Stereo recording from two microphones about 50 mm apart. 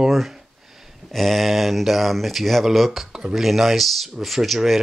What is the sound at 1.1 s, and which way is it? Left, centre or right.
Speech, centre.